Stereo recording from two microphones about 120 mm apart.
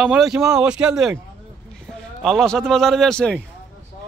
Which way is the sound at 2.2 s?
Centre (ahead or behind).